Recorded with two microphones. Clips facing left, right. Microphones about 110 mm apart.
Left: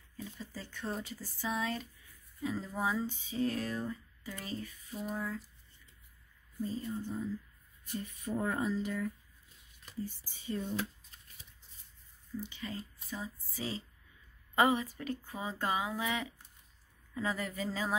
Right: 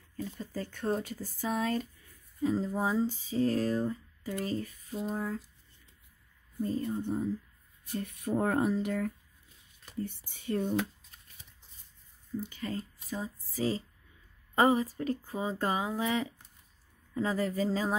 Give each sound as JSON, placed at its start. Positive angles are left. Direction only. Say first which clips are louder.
{"t": 0.4, "sound": "speech", "louder": "right 6 dB", "side_deg": -50}
{"t": 2.4, "sound": "speech", "louder": "right 5 dB", "side_deg": -35}
{"t": 6.6, "sound": "speech", "louder": "right 5 dB", "side_deg": -55}
{"t": 12.4, "sound": "speech", "louder": "right 5 dB", "side_deg": -45}